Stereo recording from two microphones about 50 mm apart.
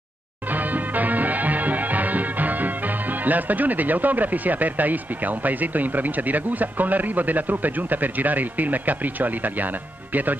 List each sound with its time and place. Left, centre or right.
0.5 s music: right